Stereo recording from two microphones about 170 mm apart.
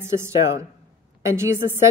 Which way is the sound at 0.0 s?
15° right (ahead or behind).